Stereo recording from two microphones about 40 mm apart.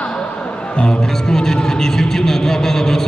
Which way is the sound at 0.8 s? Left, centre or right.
Centre.